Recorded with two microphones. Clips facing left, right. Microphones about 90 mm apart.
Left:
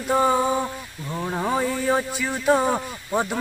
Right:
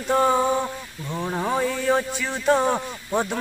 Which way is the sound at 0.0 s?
5° left (ahead or behind).